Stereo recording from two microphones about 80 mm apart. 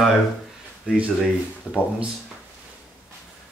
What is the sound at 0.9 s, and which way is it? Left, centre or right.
Speech, centre.